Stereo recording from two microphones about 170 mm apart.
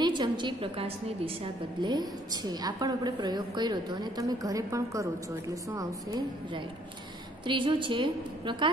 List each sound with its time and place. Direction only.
0.0 s a woman's voice: 25° right (ahead or behind)